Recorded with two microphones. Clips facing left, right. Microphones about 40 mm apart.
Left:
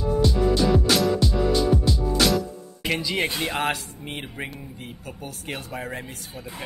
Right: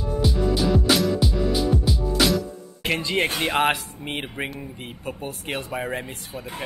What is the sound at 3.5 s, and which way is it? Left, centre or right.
Speech, right.